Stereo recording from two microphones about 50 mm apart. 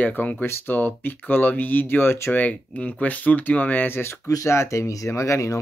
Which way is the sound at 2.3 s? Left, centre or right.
Left.